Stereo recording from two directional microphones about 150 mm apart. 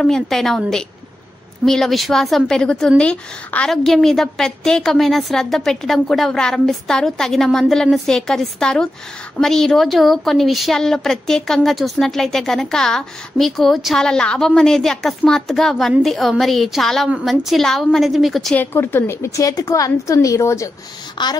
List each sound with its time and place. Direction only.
0.0 s a woman's voice: centre (ahead or behind)
18.6 s a woman's voice: 15° left (ahead or behind); by 21.3 s 30° left (ahead or behind)